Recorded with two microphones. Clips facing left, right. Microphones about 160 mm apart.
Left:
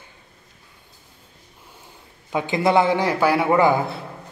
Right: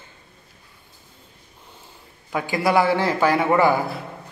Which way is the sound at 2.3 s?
20° left (ahead or behind).